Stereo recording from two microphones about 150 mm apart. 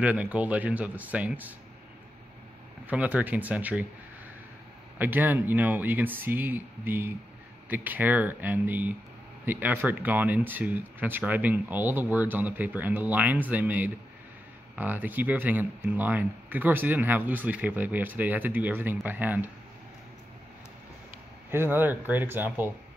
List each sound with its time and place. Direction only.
0.0 s speech: 10° right (ahead or behind)
2.9 s speech: 10° right (ahead or behind)
4.9 s speech: 10° right (ahead or behind)
21.5 s speech: 15° right (ahead or behind)